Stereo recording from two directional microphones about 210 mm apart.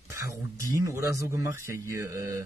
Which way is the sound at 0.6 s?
15° right (ahead or behind).